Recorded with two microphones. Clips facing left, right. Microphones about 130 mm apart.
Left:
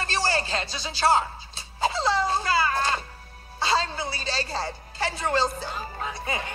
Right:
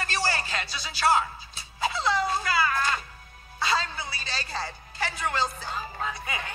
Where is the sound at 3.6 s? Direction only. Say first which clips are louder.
Left 3 dB; 30° left (ahead or behind).